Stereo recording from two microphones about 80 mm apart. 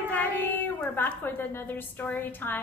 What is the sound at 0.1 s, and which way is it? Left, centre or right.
A woman's voice, left.